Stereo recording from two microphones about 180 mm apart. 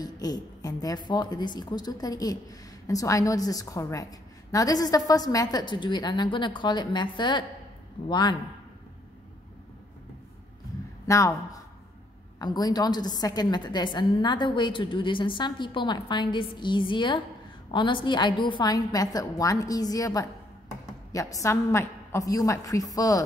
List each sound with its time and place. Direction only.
0.0 s a woman's voice: 20° left (ahead or behind)
11.1 s a woman's voice: 15° left (ahead or behind)